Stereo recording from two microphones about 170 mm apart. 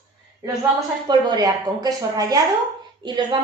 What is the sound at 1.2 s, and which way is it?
A woman's voice, 20° right (ahead or behind).